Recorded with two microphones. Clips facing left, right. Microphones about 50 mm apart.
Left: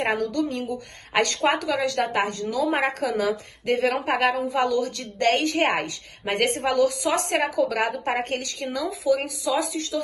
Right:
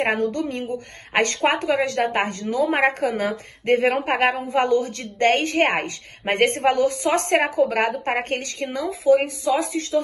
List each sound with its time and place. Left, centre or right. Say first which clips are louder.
0.0 s a woman's voice: right 2 dB; right